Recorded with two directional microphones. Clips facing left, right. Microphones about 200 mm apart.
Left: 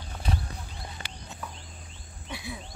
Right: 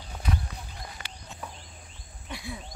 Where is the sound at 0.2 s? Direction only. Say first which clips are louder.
Right 1 dB; 30° left (ahead or behind).